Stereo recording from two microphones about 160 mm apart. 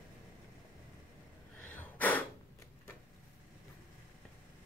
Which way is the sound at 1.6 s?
10° left (ahead or behind).